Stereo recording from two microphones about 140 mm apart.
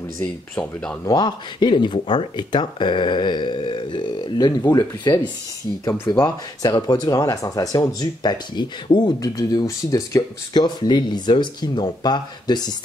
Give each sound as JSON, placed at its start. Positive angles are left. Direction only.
{"t": 0.2, "sound": "speech", "side_deg": 5}
{"t": 1.0, "sound": "speech", "side_deg": 30}
{"t": 6.2, "sound": "speech", "side_deg": 30}